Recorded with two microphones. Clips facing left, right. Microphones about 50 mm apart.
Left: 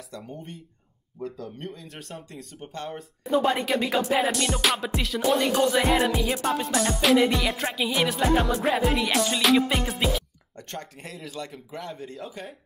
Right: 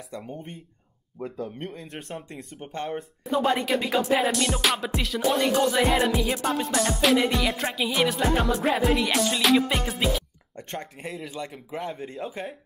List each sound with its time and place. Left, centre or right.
0.1 s speech: right
1.7 s speech: centre
2.2 s speech: right
2.9 s music: centre
10.5 s speech: right
11.0 s speech: centre
11.2 s speech: centre